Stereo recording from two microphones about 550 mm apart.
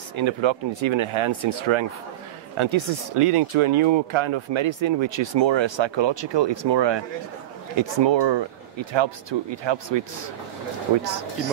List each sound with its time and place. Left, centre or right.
0.1 s speech: right